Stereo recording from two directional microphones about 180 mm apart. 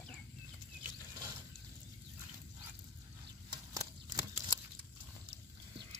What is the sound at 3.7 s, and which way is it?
Horse, 20° right (ahead or behind).